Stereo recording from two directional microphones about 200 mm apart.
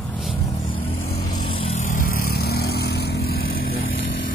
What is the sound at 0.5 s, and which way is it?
Vehicle, 40° left (ahead or behind).